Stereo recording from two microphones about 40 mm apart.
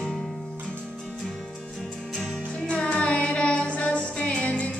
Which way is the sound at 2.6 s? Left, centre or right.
Left.